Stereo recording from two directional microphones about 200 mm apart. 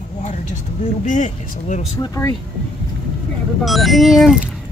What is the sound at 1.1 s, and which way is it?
Speech, 40° left (ahead or behind).